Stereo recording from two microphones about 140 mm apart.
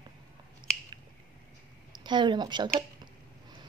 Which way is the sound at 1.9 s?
35° right (ahead or behind).